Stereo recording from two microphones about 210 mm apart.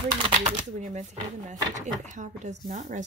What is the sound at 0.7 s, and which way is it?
Speech, 35° right (ahead or behind).